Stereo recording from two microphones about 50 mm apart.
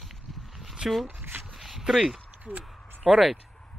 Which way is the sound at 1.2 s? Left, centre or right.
Right.